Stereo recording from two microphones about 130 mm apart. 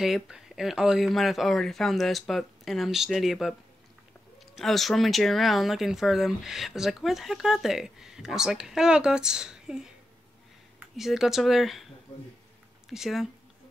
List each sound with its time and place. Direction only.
0.0 s speech: 5° right (ahead or behind)
11.0 s speech: centre (ahead or behind)
12.9 s speech: centre (ahead or behind)